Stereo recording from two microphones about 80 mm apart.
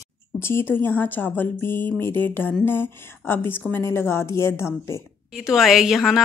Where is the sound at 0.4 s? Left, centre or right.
Left.